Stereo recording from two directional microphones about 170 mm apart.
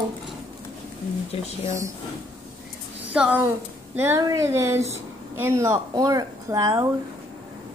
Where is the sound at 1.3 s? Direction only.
35° left (ahead or behind).